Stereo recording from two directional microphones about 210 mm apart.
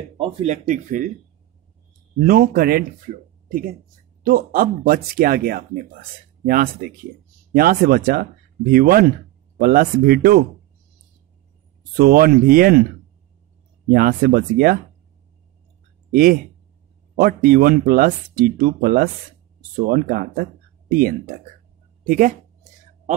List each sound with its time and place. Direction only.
0.2 s speech: 30° right (ahead or behind)
2.2 s speech: 45° right (ahead or behind)
4.2 s speech: 45° right (ahead or behind)
12.0 s speech: 45° right (ahead or behind)
13.9 s speech: 45° right (ahead or behind)
16.1 s speech: 45° right (ahead or behind)
22.0 s a sound: 40° right (ahead or behind)